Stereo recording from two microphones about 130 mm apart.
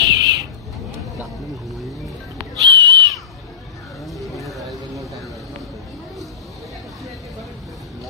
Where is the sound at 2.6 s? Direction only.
35° right (ahead or behind).